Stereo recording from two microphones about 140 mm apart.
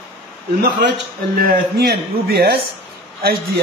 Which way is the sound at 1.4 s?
90° right.